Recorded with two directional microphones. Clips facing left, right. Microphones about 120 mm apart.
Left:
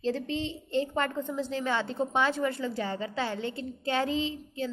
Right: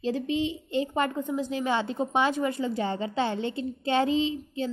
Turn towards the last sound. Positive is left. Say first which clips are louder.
# right 4 dB
turn(degrees=-20)  # may be behind; listen again after turning